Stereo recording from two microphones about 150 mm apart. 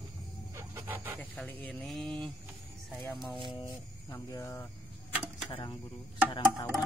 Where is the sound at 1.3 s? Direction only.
10° left (ahead or behind).